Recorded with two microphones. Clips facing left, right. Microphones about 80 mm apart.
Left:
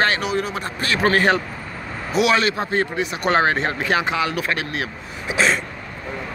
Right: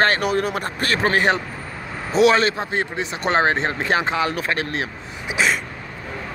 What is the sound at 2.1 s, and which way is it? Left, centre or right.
Speech, right.